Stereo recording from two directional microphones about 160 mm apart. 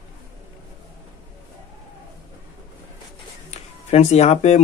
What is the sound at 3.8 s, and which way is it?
Speech, 40° left (ahead or behind).